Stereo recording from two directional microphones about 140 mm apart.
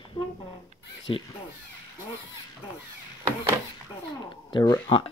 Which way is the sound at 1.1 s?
40° left (ahead or behind).